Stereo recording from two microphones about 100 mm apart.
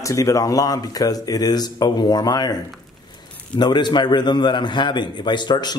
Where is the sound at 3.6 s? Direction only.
45° left (ahead or behind).